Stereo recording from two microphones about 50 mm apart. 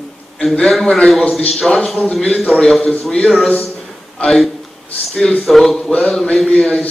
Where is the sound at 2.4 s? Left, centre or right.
Left.